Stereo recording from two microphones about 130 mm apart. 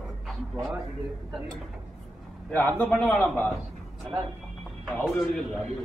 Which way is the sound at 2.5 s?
15° left (ahead or behind).